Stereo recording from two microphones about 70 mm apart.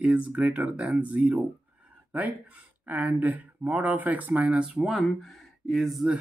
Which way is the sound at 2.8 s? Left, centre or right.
Right.